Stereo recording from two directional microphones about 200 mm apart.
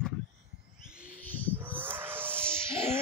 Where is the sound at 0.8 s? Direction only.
5° right (ahead or behind).